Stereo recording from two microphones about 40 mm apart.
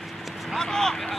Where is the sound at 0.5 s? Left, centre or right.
Centre.